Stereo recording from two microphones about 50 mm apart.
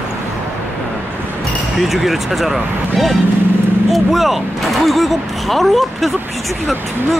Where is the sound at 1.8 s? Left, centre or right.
Centre.